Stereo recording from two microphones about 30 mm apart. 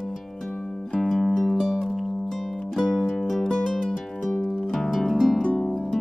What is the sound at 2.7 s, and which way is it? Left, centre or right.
Music, centre.